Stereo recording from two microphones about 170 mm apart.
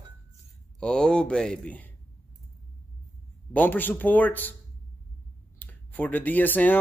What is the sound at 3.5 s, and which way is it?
A man's voice, 10° left (ahead or behind).